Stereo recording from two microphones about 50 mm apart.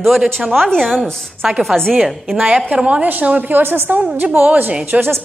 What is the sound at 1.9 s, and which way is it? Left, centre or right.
Speech, centre.